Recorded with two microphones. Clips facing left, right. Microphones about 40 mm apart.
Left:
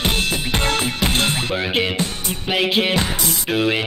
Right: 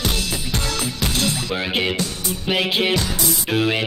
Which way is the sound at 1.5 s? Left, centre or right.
Centre.